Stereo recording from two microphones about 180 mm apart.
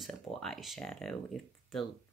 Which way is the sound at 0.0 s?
Centre (ahead or behind).